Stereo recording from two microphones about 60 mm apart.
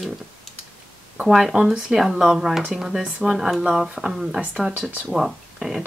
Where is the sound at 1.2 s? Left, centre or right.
Centre.